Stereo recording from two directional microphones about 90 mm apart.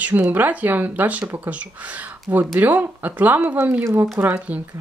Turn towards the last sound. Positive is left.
turn(degrees=-15)  # may be behind; listen again after turning